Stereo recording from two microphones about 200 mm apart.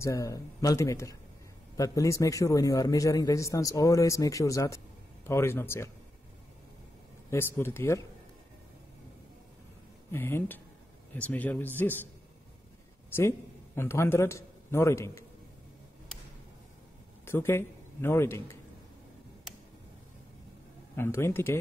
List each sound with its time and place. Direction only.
0.0 s a man's voice: 15° left (ahead or behind)
7.2 s a man's voice: 10° left (ahead or behind)
10.1 s a man's voice: 10° left (ahead or behind)
13.7 s a man's voice: 10° left (ahead or behind)
17.2 s a man's voice: 10° left (ahead or behind)
20.9 s a man's voice: 10° left (ahead or behind)